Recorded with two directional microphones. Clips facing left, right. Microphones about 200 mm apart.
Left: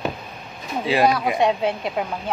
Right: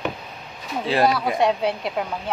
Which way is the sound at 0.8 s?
Centre (ahead or behind).